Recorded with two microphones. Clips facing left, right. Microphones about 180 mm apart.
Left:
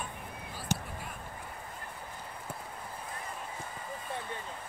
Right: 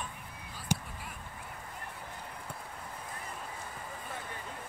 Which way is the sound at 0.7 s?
10° right (ahead or behind).